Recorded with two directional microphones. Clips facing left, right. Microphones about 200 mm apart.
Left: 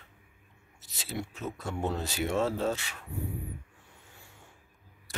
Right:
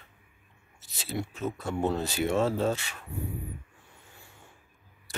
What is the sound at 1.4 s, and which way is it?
Speech, 35° right (ahead or behind).